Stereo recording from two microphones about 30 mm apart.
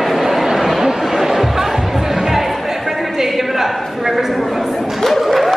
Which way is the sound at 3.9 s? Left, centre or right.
Centre.